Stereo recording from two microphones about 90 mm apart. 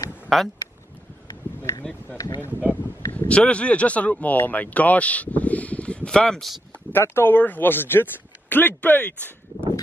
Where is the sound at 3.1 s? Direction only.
15° left (ahead or behind).